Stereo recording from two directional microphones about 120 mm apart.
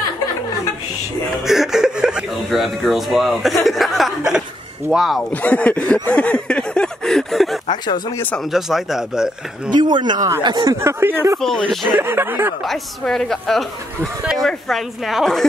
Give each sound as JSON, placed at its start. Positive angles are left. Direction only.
{"t": 1.5, "sound": "speech", "side_deg": -5}
{"t": 5.3, "sound": "speech", "side_deg": 10}
{"t": 6.0, "sound": "a sound", "side_deg": 10}
{"t": 7.6, "sound": "speech", "side_deg": 40}
{"t": 8.5, "sound": "speech", "side_deg": -5}
{"t": 9.7, "sound": "speech", "side_deg": -40}
{"t": 10.8, "sound": "speech", "side_deg": -20}
{"t": 11.6, "sound": "speech", "side_deg": 0}
{"t": 12.0, "sound": "speech", "side_deg": -20}
{"t": 12.6, "sound": "speech", "side_deg": 5}